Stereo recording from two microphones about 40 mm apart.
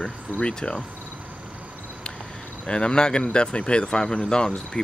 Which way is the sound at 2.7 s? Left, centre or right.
Left.